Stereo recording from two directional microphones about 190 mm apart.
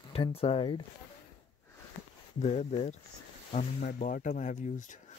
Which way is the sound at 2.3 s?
35° left (ahead or behind).